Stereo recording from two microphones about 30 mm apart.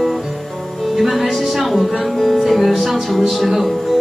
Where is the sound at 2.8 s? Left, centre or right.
Centre.